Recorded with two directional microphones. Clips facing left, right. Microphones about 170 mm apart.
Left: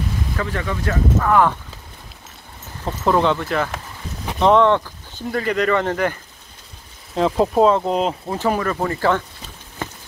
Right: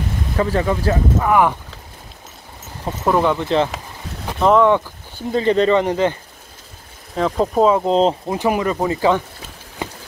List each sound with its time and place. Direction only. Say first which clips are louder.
0.4 s speech: right 8 dB; 30° right (ahead or behind)
1.2 s speech: right 1 dB; 15° right (ahead or behind)
2.8 s speech: right 1 dB; 10° right (ahead or behind)
3.4 s speech: right 5 dB; 25° right (ahead or behind)
4.4 s speech: right 1 dB; 5° right (ahead or behind)
5.3 s speech: right 4 dB; 25° right (ahead or behind)
7.2 s speech: left 1 dB; centre (ahead or behind)
7.9 s speech: right 5 dB; 30° right (ahead or behind)
8.3 s speech: right 2 dB; 15° right (ahead or behind)
9.8 s a sound: right 2 dB; 15° right (ahead or behind)